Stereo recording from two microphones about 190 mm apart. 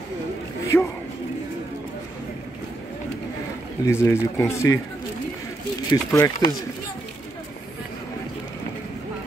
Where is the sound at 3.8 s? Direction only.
15° left (ahead or behind).